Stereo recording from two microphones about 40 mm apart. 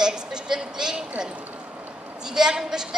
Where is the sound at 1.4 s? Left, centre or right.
Right.